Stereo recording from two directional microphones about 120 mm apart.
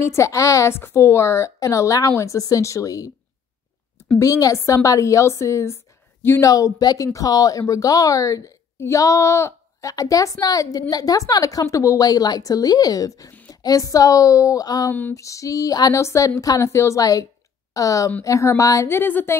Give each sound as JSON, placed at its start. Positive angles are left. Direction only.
{"t": 0.0, "sound": "a woman's voice", "side_deg": 25}
{"t": 4.2, "sound": "a woman's voice", "side_deg": 30}
{"t": 6.5, "sound": "a woman's voice", "side_deg": 30}